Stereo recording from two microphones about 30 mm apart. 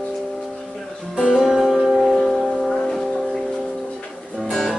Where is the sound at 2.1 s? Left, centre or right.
Centre.